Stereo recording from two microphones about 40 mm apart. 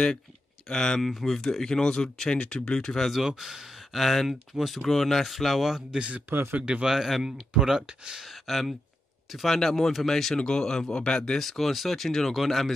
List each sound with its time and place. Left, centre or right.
0.7 s speech: centre
3.1 s speech: centre
4.0 s speech: centre
5.9 s speech: right
6.9 s speech: centre
7.5 s speech: centre
8.2 s speech: centre
10.3 s speech: centre
11.3 s speech: centre